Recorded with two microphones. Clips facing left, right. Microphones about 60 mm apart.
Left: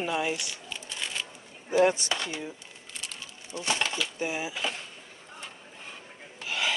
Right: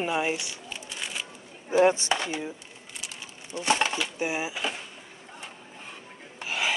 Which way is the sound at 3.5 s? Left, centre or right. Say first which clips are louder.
Right 4 dB; right.